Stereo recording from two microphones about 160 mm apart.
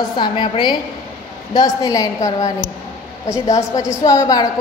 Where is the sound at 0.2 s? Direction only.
30° left (ahead or behind).